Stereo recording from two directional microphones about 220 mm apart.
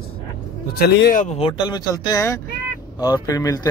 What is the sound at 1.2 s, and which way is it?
Speech, 25° left (ahead or behind).